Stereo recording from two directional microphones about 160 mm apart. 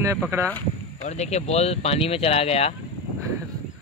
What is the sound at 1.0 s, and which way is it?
Speech, 45° left (ahead or behind).